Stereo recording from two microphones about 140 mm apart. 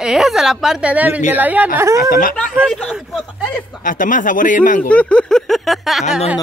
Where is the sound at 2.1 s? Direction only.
80° left.